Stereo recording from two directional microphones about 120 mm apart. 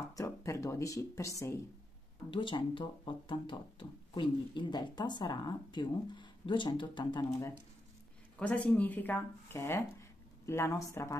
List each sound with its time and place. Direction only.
0.1 s speech: 25° left (ahead or behind)
2.3 s speech: 45° left (ahead or behind)
8.4 s speech: 10° left (ahead or behind); by 11.1 s 25° left (ahead or behind)